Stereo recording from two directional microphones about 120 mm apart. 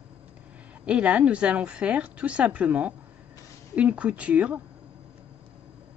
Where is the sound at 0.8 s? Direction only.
10° right (ahead or behind).